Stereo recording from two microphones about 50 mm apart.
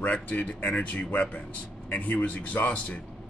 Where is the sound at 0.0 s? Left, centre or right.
Left.